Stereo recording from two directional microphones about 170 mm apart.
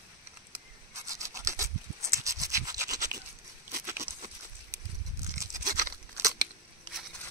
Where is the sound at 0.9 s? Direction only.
20° right (ahead or behind).